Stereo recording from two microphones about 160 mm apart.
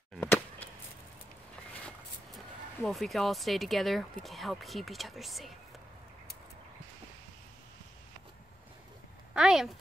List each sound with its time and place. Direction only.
0.2 s a sound: 15° left (ahead or behind)
1.9 s speech: centre (ahead or behind)
9.3 s speech: 5° right (ahead or behind)